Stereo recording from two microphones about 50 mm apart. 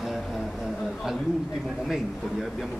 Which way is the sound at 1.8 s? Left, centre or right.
Centre.